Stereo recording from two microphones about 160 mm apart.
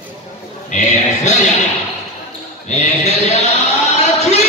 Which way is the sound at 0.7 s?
45° left (ahead or behind).